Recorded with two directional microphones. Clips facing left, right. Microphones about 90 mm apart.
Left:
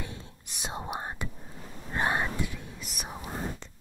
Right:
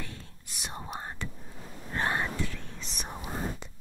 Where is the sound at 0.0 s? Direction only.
20° left (ahead or behind).